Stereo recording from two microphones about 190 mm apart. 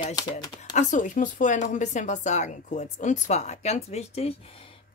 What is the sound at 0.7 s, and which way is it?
Speech, 40° left (ahead or behind).